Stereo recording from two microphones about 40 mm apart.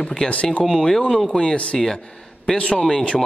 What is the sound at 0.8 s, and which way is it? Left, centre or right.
A man's voice, centre.